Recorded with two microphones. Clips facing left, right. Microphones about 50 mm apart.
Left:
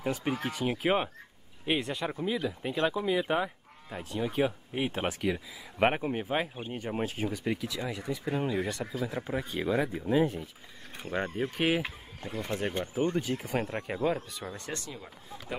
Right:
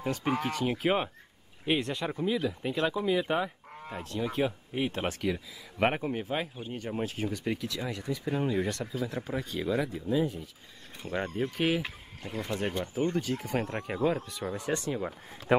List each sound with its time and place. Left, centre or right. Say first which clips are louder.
0.0 s speech: right 1 dB; centre; by 10.0 s left
10.0 s speech: left 4 dB; left
11.1 s speech: even; centre
13.5 s speech: even; centre
14.7 s speech: right 8 dB; right